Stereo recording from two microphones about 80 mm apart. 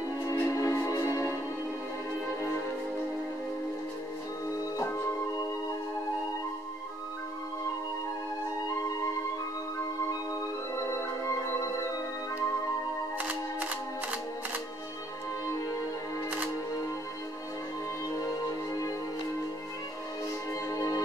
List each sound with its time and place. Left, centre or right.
0.3 s music: left
11.0 s music: left
13.2 s music: right
20.7 s music: left